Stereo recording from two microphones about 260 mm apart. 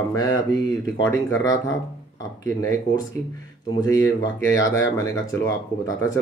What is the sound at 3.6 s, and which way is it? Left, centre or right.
Speech, centre.